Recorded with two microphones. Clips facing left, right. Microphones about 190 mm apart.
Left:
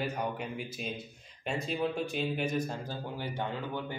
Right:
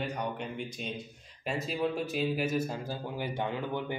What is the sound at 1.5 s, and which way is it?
A man's voice, 5° right (ahead or behind).